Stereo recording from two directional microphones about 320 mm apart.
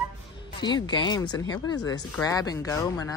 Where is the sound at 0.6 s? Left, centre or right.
Centre.